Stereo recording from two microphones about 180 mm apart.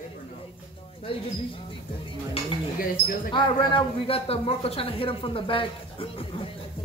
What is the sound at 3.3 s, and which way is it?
A man's voice, 30° left (ahead or behind).